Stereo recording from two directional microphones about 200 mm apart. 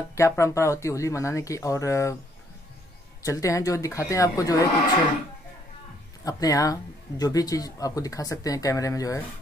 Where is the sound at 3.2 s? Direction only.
15° left (ahead or behind).